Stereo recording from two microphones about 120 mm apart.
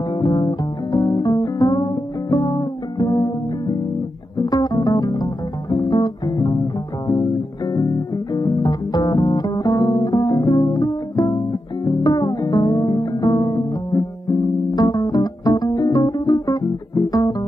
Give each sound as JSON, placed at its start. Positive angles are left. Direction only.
{"t": 0.1, "sound": "music", "side_deg": 35}